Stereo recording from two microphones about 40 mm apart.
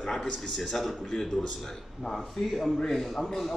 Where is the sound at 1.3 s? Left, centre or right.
Centre.